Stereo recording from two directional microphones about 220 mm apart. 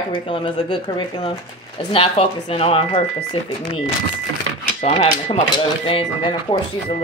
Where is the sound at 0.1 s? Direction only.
25° left (ahead or behind).